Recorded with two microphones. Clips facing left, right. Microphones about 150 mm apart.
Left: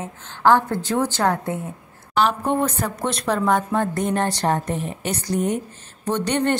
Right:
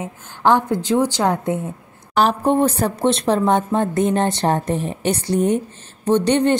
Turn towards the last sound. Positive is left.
turn(degrees=-20)  # may be behind; listen again after turning